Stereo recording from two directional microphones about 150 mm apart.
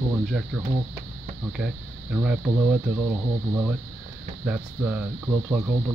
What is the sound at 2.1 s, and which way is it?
Speech, 10° right (ahead or behind).